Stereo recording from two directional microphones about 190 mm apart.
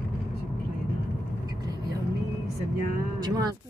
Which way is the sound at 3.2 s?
20° right (ahead or behind).